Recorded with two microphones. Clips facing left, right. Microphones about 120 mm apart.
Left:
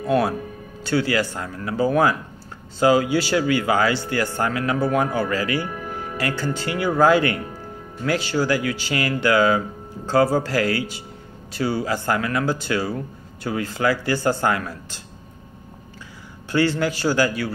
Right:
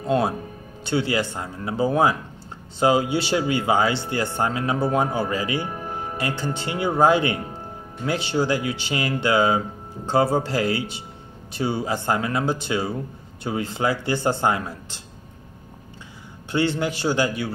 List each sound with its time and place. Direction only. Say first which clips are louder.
0.0 s speech: left 2 dB; 25° right (ahead or behind)
16.5 s speech: left 2 dB; 20° right (ahead or behind)